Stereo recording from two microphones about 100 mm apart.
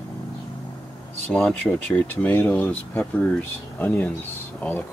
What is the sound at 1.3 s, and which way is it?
Speech, 10° left (ahead or behind).